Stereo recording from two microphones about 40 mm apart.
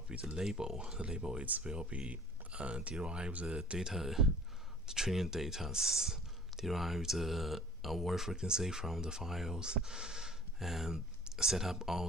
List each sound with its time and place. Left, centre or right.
0.2 s speech: centre
1.9 s speech: right
3.9 s speech: centre
6.6 s speech: centre
8.4 s speech: centre
11.2 s a sound: centre
11.5 s speech: centre